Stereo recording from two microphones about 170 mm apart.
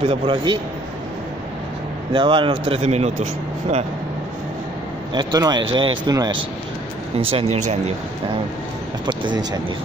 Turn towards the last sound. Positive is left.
turn(degrees=-40)  # may be behind; listen again after turning